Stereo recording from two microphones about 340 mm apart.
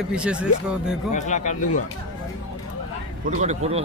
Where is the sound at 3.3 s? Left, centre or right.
Centre.